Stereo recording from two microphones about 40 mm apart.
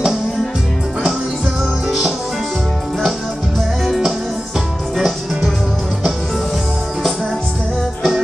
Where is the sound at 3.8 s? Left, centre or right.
Centre.